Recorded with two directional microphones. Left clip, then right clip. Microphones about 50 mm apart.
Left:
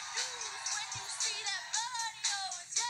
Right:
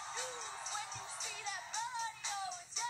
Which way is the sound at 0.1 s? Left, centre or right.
Right.